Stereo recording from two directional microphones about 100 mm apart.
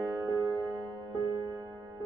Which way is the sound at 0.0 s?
35° right (ahead or behind).